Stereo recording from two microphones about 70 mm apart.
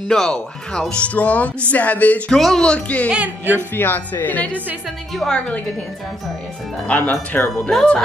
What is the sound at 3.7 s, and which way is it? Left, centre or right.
Speech, left.